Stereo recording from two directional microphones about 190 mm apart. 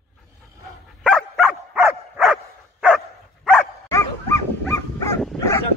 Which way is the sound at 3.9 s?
15° left (ahead or behind).